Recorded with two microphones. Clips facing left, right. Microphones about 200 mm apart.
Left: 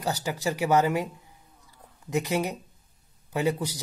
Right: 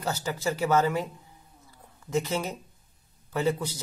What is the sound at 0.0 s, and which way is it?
Speech, 15° left (ahead or behind).